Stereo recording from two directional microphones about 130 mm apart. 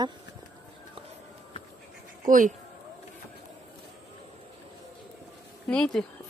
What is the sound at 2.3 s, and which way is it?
Speech, 90° right.